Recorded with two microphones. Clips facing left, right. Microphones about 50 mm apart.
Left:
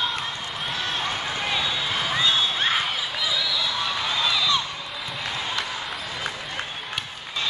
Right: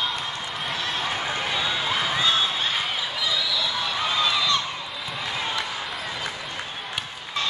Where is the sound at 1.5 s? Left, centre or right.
Centre.